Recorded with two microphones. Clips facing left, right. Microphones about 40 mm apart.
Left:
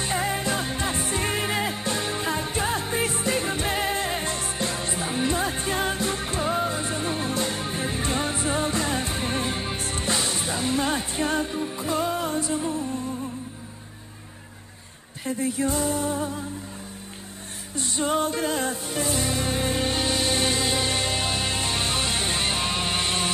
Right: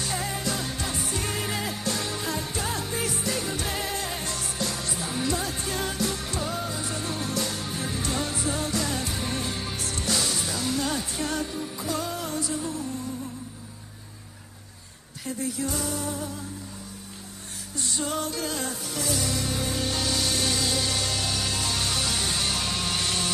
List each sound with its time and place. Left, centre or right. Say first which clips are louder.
0.0 s music: left 4 dB; left
15.2 s speech: left 5 dB; left
17.7 s music: left 5 dB; left